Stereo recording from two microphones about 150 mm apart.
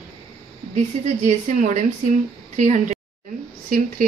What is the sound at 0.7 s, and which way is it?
A woman's voice, 55° right (ahead or behind).